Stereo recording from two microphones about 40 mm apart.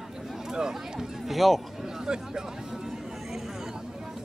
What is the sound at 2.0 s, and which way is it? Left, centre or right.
Speech, centre.